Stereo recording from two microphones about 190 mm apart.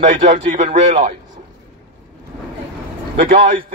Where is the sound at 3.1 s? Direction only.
45° right (ahead or behind).